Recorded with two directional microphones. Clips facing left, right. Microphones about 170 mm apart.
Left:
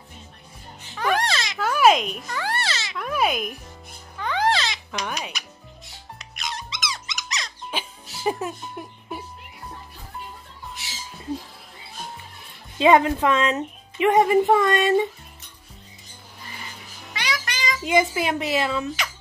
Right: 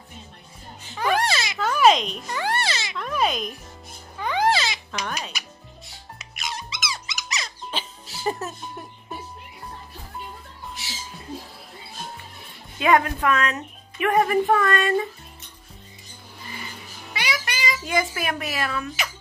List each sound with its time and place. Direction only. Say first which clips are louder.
0.9 s babbling: right 1 dB; 5° right (ahead or behind)
1.6 s a sound: even; 5° left (ahead or behind)
2.2 s music: right 2 dB; 20° right (ahead or behind)
3.0 s music: left 1 dB; 10° left (ahead or behind)
4.2 s babbling: right 1 dB; 10° right (ahead or behind)
5.4 s music: even; 5° right (ahead or behind)
6.1 s squeak: even; 5° right (ahead or behind)
7.7 s music: left 2 dB; 10° left (ahead or behind)
12.7 s a woman's voice: left 3 dB; 25° left (ahead or behind)
17.1 s music: right 1 dB; 10° right (ahead or behind)
17.8 s a woman's voice: left 6 dB; 20° left (ahead or behind)